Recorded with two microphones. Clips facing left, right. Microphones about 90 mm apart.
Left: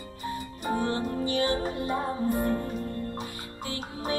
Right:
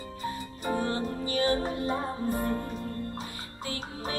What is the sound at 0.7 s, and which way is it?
Music, 35° left (ahead or behind).